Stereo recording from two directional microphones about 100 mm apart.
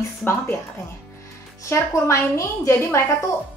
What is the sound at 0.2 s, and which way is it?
Speech, 20° left (ahead or behind).